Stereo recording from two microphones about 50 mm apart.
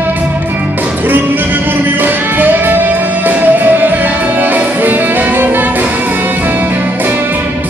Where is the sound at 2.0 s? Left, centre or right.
Right.